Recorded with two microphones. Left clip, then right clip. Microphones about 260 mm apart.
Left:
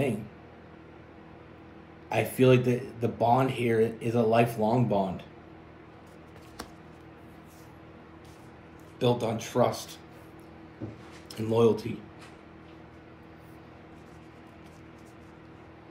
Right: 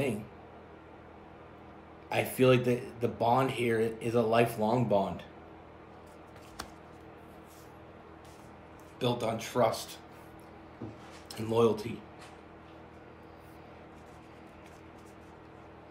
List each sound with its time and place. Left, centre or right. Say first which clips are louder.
2.0 s speech: left 3 dB; centre
9.0 s speech: left 4 dB; centre
11.2 s speech: left 3 dB; centre